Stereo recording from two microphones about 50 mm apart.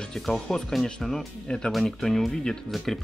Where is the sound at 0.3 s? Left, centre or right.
Centre.